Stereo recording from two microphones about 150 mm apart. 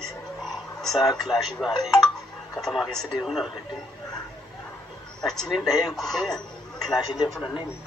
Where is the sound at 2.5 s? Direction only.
Centre (ahead or behind).